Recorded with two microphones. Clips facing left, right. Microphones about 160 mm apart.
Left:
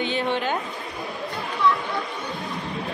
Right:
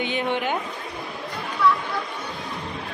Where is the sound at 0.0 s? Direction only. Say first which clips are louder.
Even; 15° right (ahead or behind).